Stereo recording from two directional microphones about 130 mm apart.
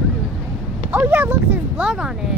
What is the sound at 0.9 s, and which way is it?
Speech, 15° right (ahead or behind).